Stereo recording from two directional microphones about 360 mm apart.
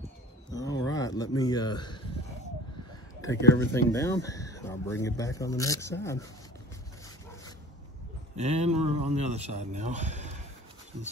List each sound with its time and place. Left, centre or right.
0.5 s a sound: centre
3.3 s speech: centre
8.4 s speech: centre